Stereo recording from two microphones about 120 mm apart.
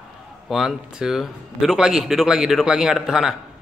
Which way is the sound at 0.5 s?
5° right (ahead or behind).